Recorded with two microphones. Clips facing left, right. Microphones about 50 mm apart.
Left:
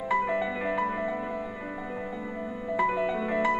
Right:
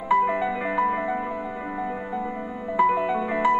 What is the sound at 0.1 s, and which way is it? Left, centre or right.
Music, centre.